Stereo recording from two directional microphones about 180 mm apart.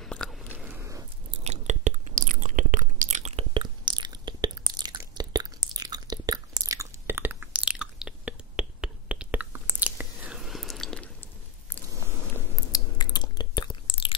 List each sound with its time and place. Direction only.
0.0 s biting: 5° left (ahead or behind)
0.5 s biting: 10° right (ahead or behind)
1.4 s chewing: 40° right (ahead or behind); by 11.1 s 5° left (ahead or behind)
12.7 s a sound: 25° left (ahead or behind)